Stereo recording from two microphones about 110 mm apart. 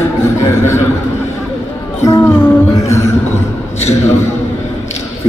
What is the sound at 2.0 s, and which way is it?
Music, 25° left (ahead or behind).